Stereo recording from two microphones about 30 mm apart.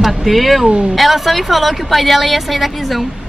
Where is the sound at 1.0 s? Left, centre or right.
Centre.